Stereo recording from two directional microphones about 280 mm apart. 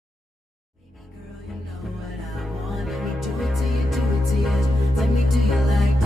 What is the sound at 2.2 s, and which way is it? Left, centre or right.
Music, centre.